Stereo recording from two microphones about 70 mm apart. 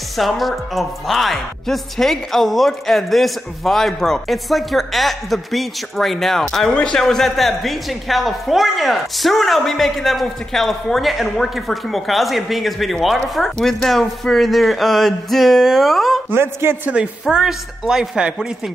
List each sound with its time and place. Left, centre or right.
0.2 s a woman's voice: centre
16.3 s a man's voice: right
16.9 s speech: centre